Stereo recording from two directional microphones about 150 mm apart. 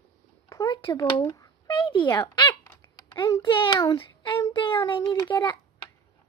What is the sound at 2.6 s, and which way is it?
A child's voice, 20° left (ahead or behind).